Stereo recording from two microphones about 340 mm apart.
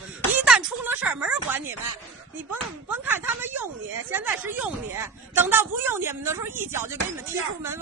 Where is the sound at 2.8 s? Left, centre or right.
Centre.